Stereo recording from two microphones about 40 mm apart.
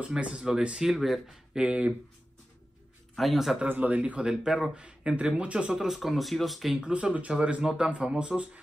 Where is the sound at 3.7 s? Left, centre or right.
Right.